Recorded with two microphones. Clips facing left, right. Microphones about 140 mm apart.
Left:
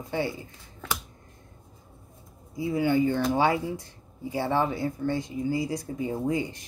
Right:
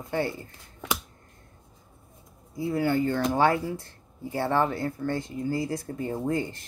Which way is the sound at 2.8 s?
15° left (ahead or behind).